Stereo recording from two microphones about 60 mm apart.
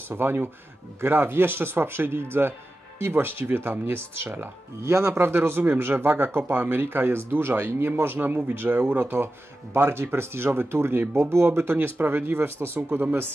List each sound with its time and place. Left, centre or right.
0.1 s speech: right